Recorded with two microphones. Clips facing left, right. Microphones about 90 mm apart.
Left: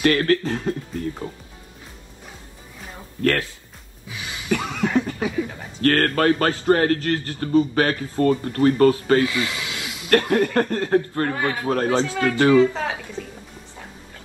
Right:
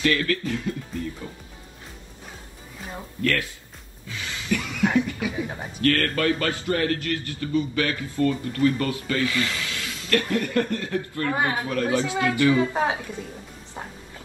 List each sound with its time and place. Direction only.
0.1 s a man's voice: 40° left (ahead or behind)
3.2 s a man's voice: 40° left (ahead or behind)
4.1 s music: 15° left (ahead or behind)
4.5 s music: 45° left (ahead or behind)
4.9 s snicker: 40° left (ahead or behind)
5.9 s a man's voice: 40° left (ahead or behind)
9.3 s snake: 20° left (ahead or behind)
10.1 s speech: 45° left (ahead or behind)
11.3 s speech: 20° right (ahead or behind)
11.6 s a man's voice: 40° left (ahead or behind)
12.5 s speech: 20° right (ahead or behind)